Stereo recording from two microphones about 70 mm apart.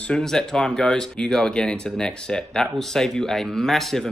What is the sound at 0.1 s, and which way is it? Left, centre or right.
A man's voice, centre.